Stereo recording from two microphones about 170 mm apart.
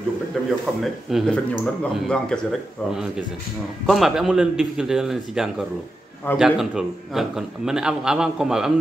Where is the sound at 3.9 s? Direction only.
Centre (ahead or behind).